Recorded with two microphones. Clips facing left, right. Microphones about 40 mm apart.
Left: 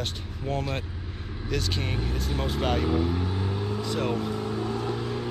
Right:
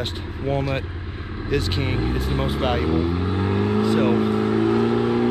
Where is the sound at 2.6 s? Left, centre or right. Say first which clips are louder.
Right 3 dB; right.